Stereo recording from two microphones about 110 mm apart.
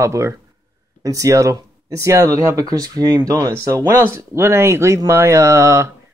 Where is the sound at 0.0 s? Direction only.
25° right (ahead or behind).